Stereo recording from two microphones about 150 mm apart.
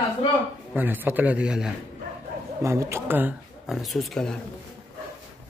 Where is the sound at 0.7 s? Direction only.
10° right (ahead or behind).